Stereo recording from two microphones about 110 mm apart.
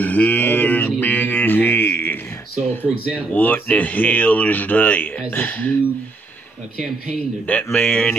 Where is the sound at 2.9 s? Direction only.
10° right (ahead or behind).